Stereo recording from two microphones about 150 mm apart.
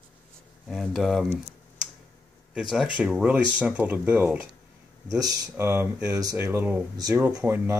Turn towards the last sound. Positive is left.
turn(degrees=-15)  # may be behind; listen again after turning